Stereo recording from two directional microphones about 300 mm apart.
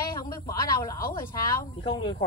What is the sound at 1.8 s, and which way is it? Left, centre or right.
Speech, centre.